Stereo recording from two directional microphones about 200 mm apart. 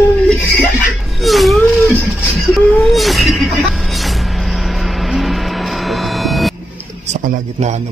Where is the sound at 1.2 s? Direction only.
Centre (ahead or behind).